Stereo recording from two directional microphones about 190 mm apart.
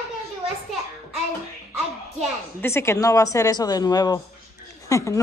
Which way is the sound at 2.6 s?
15° left (ahead or behind).